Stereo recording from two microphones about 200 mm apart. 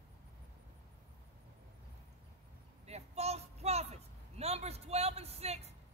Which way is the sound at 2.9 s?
30° right (ahead or behind).